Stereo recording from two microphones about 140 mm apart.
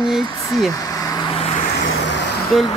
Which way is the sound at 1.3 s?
50° left (ahead or behind).